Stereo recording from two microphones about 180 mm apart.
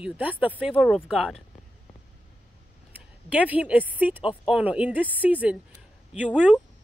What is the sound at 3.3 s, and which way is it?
Speech, 5° right (ahead or behind).